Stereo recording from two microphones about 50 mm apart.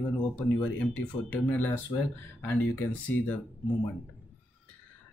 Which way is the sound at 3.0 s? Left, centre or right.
Left.